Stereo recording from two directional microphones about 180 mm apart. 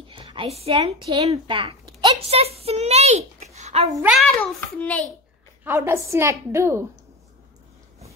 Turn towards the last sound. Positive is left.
turn(degrees=-15)  # may be behind; listen again after turning